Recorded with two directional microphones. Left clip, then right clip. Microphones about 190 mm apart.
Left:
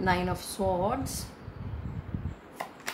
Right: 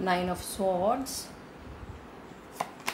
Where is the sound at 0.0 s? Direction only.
35° left (ahead or behind).